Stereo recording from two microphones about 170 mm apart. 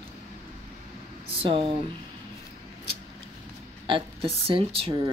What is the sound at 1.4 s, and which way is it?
Speech, 30° right (ahead or behind).